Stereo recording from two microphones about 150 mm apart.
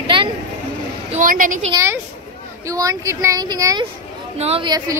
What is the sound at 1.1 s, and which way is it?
Speech, 65° right (ahead or behind).